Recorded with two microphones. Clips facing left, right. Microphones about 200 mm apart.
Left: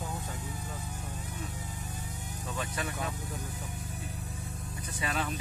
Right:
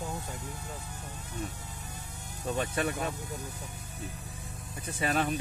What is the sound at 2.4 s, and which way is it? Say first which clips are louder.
Speech: right 6 dB; 60° right (ahead or behind).